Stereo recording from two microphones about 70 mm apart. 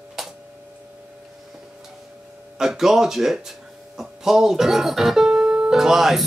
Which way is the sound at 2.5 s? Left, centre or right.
Centre.